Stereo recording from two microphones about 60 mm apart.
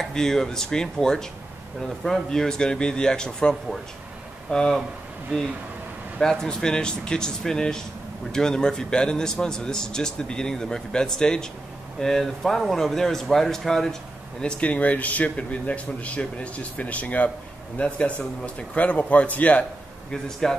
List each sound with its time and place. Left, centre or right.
0.0 s a man's voice: centre
6.2 s a man's voice: centre
14.4 s a man's voice: centre
20.1 s a man's voice: centre